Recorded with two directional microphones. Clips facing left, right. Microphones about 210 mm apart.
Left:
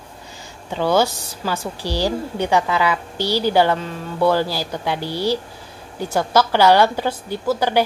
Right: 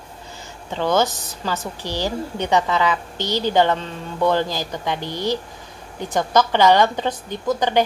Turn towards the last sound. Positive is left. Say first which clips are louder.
# left 1 dB
turn(degrees=10)  # may be behind; listen again after turning